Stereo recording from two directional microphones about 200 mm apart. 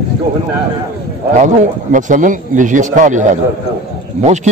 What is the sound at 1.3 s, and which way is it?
A man's voice, 40° right (ahead or behind).